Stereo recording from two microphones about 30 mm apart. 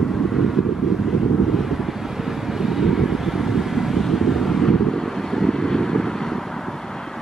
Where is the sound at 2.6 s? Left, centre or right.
Centre.